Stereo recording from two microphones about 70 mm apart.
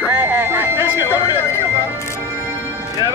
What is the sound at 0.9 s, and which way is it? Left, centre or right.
Speech, right.